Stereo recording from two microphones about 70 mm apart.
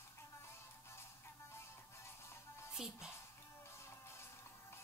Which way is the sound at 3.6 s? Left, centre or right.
Left.